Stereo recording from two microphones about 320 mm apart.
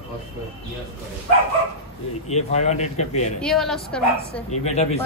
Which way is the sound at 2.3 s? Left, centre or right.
Left.